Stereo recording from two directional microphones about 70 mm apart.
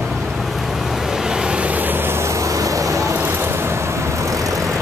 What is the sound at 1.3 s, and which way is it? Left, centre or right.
Vehicle, centre.